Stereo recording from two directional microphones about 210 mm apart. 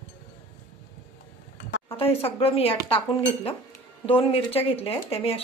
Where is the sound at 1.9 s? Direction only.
25° left (ahead or behind).